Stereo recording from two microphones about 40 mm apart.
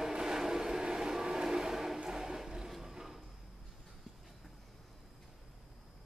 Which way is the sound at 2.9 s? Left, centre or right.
Centre.